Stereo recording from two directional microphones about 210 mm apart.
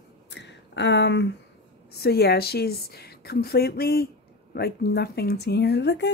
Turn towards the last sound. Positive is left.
turn(degrees=55)  # may be behind; listen again after turning